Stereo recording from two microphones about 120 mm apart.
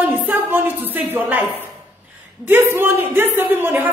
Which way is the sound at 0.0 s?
15° right (ahead or behind).